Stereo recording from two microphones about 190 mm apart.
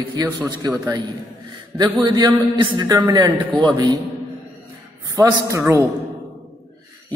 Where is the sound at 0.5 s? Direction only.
20° right (ahead or behind).